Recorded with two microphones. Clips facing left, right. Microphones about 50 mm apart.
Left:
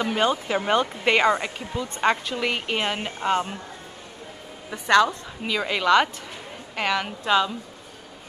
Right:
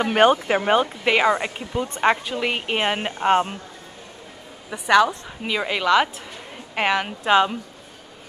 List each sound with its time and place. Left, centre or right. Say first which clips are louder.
0.1 s speech: right 10 dB; right
0.6 s a woman's voice: right 3 dB; centre
4.6 s a woman's voice: right 2 dB; centre
6.9 s a woman's voice: right 3 dB; centre